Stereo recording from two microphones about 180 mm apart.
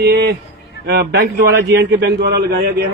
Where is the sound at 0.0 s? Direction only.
65° right (ahead or behind).